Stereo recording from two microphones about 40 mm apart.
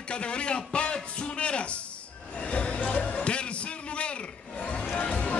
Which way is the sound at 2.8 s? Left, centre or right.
Left.